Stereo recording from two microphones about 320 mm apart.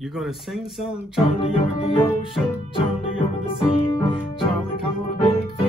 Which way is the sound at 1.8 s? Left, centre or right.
Centre.